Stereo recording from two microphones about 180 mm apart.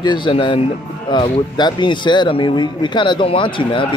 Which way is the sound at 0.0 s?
25° left (ahead or behind).